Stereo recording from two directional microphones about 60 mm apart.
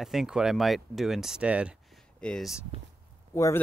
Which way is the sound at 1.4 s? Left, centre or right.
Centre.